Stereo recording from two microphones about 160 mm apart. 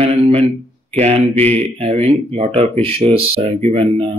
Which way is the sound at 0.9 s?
40° right (ahead or behind).